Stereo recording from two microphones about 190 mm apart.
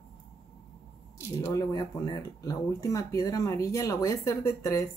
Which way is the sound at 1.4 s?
15° left (ahead or behind).